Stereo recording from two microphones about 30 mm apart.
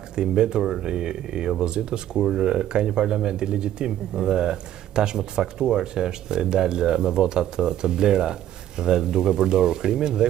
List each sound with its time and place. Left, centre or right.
0.2 s speech: right